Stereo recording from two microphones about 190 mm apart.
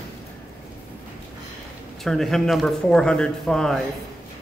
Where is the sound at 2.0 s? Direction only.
Centre (ahead or behind).